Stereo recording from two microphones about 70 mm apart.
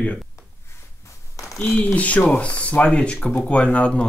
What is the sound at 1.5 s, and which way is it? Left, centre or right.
Speech, left.